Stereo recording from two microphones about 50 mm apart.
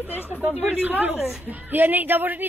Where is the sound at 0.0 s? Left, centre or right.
Right.